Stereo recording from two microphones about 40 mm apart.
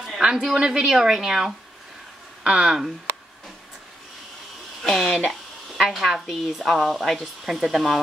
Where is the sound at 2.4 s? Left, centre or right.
Right.